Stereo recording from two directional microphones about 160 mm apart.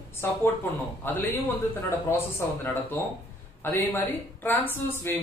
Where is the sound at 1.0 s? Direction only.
10° left (ahead or behind).